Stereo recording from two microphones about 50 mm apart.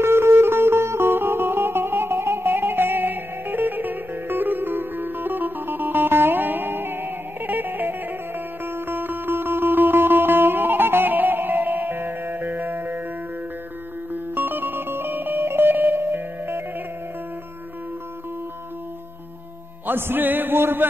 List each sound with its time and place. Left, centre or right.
0.0 s music: right
14.1 s music: right
19.9 s music: right